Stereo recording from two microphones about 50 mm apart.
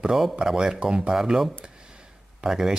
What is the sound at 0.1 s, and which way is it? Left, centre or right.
Speech, centre.